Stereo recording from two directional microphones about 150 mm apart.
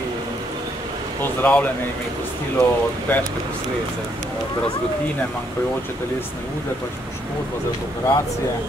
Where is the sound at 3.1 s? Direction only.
10° left (ahead or behind).